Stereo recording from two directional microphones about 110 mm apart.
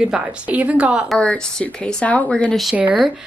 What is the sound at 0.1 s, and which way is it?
Speech, 10° right (ahead or behind).